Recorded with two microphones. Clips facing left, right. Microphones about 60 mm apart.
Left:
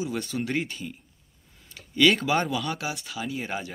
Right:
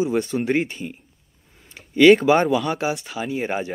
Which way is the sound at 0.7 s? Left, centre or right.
Right.